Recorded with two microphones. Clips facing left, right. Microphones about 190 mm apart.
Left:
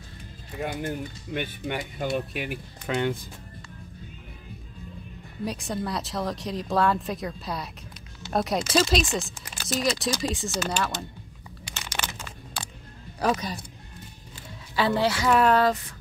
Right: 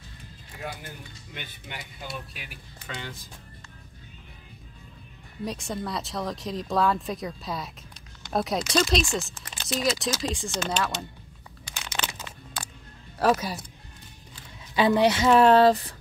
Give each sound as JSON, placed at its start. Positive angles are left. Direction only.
{"t": 0.6, "sound": "speech", "side_deg": 50}
{"t": 5.4, "sound": "speech", "side_deg": 0}
{"t": 13.2, "sound": "speech", "side_deg": -5}
{"t": 14.8, "sound": "speech", "side_deg": -20}